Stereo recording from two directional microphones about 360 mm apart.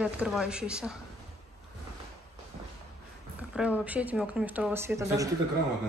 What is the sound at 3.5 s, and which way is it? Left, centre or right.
A woman's voice, centre.